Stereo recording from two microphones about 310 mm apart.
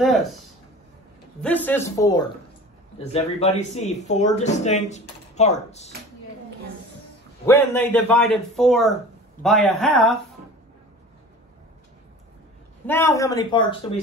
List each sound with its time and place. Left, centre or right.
0.0 s a man's voice: centre; by 5.9 s left
7.4 s a man's voice: centre
12.8 s a man's voice: centre